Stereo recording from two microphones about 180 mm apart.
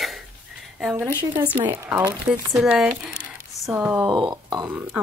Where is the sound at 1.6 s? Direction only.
10° right (ahead or behind).